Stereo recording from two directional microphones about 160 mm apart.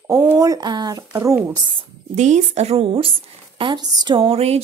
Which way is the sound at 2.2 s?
45° right (ahead or behind).